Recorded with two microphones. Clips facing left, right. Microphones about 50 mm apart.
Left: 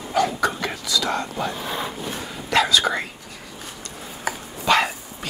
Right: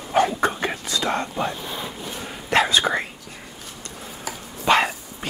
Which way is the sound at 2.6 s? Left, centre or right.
Right.